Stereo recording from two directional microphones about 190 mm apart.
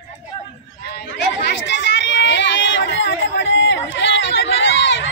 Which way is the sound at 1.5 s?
65° left (ahead or behind).